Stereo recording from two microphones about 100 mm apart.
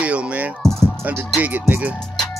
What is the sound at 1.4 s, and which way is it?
Music, 20° right (ahead or behind).